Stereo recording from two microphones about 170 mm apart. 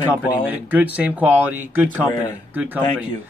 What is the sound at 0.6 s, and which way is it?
Speech, 10° right (ahead or behind).